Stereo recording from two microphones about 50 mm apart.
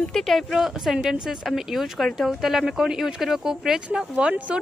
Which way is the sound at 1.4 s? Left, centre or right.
Centre.